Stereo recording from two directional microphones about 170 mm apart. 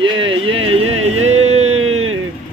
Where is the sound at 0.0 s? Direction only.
30° right (ahead or behind).